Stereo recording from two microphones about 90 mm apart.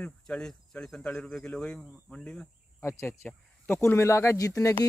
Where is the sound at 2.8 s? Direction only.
30° left (ahead or behind).